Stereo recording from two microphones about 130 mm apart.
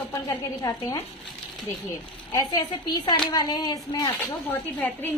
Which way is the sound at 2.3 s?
30° left (ahead or behind).